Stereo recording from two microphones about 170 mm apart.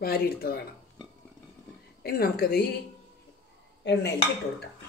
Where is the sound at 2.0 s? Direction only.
65° left (ahead or behind).